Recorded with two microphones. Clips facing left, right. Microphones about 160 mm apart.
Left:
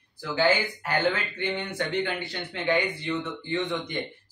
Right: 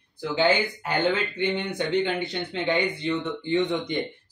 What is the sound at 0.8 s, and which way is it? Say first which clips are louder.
Speech: right 1 dB; 20° right (ahead or behind).